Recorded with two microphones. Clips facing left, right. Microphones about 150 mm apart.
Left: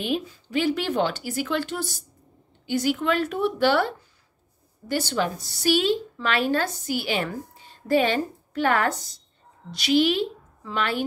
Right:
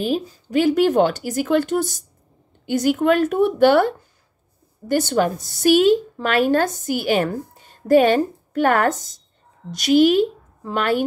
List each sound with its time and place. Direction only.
0.0 s a woman's voice: 40° right (ahead or behind)